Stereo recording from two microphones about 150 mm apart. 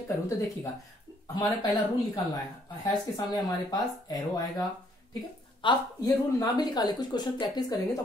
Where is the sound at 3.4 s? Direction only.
25° left (ahead or behind).